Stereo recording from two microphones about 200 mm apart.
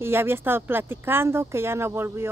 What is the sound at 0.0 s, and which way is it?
Speech, 10° right (ahead or behind).